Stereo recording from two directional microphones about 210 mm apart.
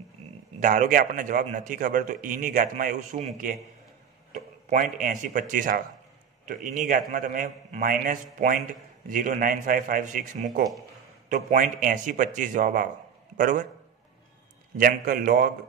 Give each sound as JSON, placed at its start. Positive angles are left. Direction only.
{"t": 0.6, "sound": "a man's voice", "side_deg": -35}
{"t": 4.3, "sound": "a sound", "side_deg": -35}
{"t": 5.0, "sound": "a man's voice", "side_deg": -35}
{"t": 14.8, "sound": "a man's voice", "side_deg": -45}